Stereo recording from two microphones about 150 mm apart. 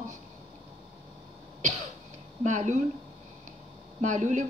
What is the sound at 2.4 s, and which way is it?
Speech, 55° right (ahead or behind).